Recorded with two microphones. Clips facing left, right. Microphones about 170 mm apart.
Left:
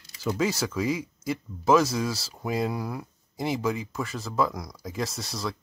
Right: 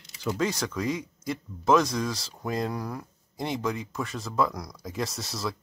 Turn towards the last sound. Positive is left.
turn(degrees=0)  # may be behind; listen again after turning